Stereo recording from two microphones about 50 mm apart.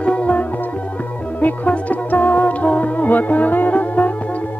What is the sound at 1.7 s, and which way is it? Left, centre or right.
Music, left.